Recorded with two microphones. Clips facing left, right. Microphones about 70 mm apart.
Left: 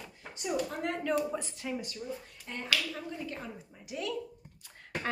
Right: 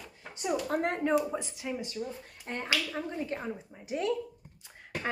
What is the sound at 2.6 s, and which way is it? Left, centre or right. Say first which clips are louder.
Speech: right 1 dB; right.